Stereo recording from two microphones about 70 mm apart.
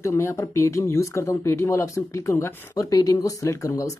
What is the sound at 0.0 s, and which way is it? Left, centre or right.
Speech, left.